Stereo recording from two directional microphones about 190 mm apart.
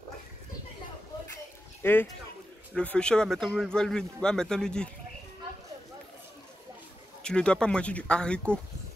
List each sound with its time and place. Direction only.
1.8 s speech: 10° left (ahead or behind)
7.2 s speech: 5° left (ahead or behind)